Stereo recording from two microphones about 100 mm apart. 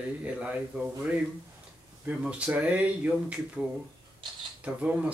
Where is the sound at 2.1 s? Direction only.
10° right (ahead or behind).